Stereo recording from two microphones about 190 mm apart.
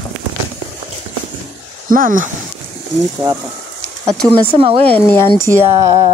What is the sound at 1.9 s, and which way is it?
Speech, 45° right (ahead or behind).